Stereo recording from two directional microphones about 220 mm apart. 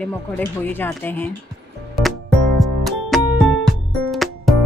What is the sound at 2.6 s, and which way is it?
Music, centre (ahead or behind).